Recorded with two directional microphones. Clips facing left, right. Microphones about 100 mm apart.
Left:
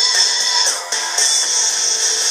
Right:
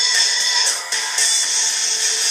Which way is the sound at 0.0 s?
25° left (ahead or behind).